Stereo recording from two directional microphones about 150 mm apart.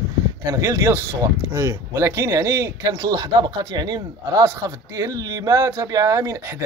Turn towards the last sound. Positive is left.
turn(degrees=-20)  # may be behind; listen again after turning